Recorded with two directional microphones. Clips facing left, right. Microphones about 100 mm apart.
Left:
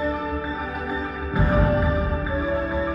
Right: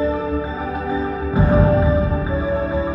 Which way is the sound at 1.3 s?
20° right (ahead or behind).